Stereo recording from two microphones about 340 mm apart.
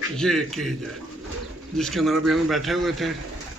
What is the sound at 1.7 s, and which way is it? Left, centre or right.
A man's voice, centre.